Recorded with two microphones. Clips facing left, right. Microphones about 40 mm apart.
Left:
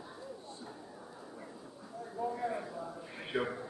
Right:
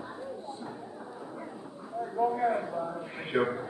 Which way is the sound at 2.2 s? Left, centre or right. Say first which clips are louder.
Right 9 dB; right.